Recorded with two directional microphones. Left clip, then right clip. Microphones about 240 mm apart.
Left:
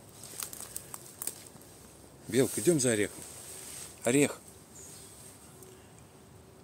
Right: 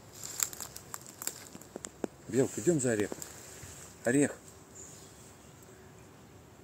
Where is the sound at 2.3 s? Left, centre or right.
Centre.